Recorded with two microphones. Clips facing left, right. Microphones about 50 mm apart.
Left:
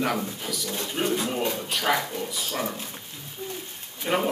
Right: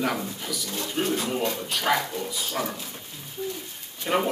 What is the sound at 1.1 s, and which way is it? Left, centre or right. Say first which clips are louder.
Speech: even; centre.